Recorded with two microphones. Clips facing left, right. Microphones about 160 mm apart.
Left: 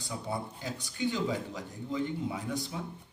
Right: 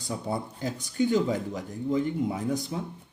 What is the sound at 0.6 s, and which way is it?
Speech, 45° right (ahead or behind).